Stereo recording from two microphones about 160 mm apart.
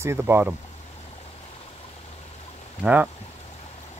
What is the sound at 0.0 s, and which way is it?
Speech, 15° right (ahead or behind).